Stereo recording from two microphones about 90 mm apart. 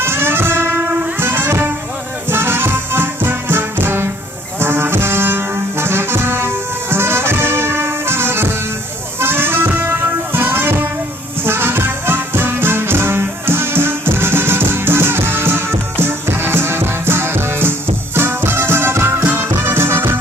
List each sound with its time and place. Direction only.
0.0 s music: 25° right (ahead or behind)
4.6 s brass instrument: 25° right (ahead or behind)
9.2 s music: 25° right (ahead or behind)